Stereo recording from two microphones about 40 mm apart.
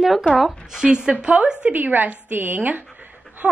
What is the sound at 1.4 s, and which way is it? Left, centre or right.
Speech, right.